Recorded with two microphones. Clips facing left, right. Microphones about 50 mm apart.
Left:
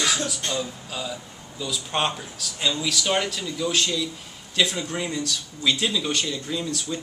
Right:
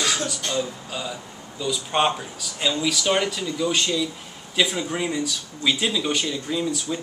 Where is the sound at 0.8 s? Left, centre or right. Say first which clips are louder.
Right 1 dB; centre.